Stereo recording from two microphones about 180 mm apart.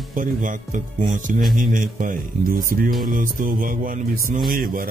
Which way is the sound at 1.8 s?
45° right (ahead or behind).